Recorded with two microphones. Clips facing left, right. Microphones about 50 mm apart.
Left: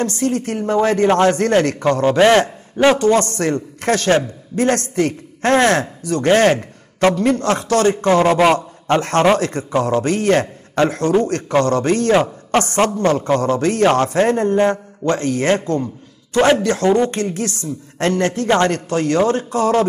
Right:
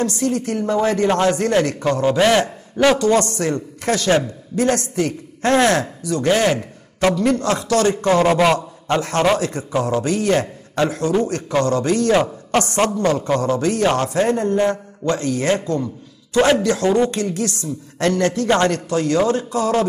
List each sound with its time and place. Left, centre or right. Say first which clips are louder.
0.0 s a man's voice: left 1 dB; left
1.4 s a man's voice: left 2 dB; left
2.1 s a man's voice: left 3 dB; left
3.0 s a man's voice: left 2 dB; left